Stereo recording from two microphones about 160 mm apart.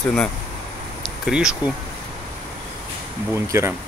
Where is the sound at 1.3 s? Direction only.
5° right (ahead or behind).